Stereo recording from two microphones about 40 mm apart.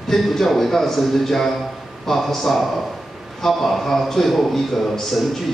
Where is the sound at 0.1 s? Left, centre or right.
Centre.